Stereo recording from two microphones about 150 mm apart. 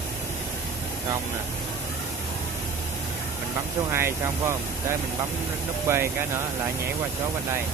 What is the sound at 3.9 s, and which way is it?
Speech, 15° right (ahead or behind).